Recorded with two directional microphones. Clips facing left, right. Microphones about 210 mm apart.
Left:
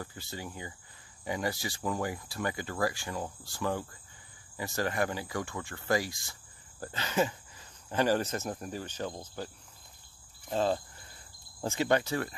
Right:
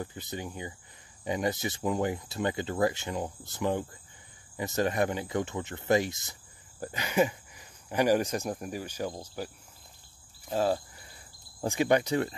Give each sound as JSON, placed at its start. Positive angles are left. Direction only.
{"t": 0.0, "sound": "speech", "side_deg": -20}
{"t": 10.5, "sound": "speech", "side_deg": -10}